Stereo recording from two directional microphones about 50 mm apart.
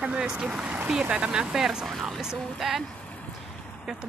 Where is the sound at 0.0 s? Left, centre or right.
Right.